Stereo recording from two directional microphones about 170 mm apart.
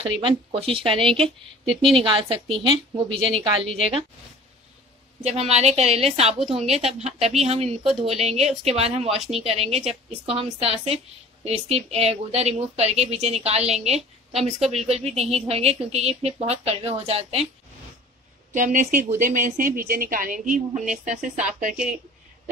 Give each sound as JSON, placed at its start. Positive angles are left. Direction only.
{"t": 0.0, "sound": "a woman's voice", "side_deg": -30}
{"t": 1.0, "sound": "speech", "side_deg": 5}
{"t": 2.0, "sound": "a woman's voice", "side_deg": -30}
{"t": 5.2, "sound": "a woman's voice", "side_deg": -40}
{"t": 18.5, "sound": "speech", "side_deg": -50}